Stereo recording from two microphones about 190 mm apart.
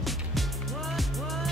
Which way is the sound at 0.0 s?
Centre (ahead or behind).